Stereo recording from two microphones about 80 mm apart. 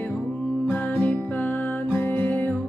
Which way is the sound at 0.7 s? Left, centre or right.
Centre.